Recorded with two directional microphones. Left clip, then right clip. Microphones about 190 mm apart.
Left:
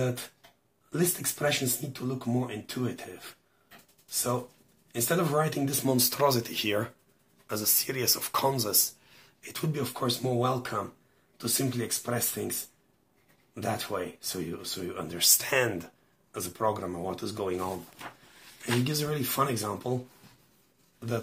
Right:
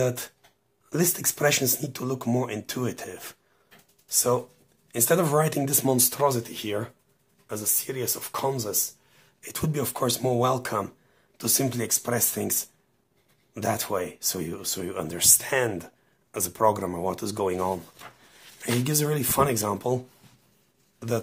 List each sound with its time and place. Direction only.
0.0 s speech: 25° right (ahead or behind)